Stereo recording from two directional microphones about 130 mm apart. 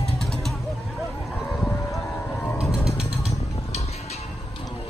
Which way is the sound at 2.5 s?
5° right (ahead or behind).